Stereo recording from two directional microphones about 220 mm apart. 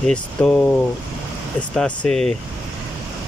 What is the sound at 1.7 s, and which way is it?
Speech, 5° left (ahead or behind).